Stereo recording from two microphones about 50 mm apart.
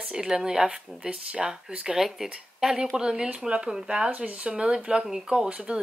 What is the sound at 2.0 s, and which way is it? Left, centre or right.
Speech, centre.